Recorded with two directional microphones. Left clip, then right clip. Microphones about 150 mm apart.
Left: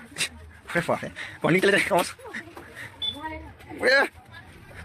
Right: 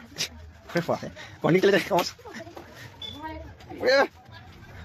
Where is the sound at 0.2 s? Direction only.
15° right (ahead or behind).